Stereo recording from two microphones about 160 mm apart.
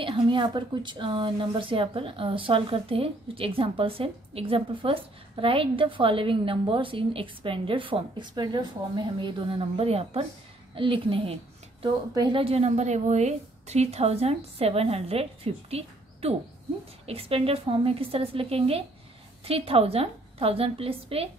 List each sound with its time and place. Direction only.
0.0 s speech: 30° right (ahead or behind)